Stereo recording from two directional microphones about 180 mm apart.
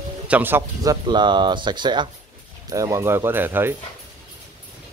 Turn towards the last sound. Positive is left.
turn(degrees=-10)  # may be behind; listen again after turning